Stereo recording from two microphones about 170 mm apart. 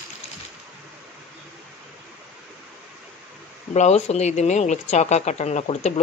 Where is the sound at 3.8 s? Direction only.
40° left (ahead or behind).